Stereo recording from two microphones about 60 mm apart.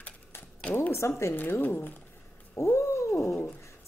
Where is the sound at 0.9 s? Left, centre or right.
Left.